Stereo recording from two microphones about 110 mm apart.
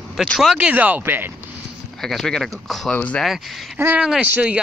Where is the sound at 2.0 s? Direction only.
5° left (ahead or behind).